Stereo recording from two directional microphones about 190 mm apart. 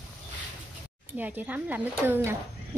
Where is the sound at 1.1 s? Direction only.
10° right (ahead or behind).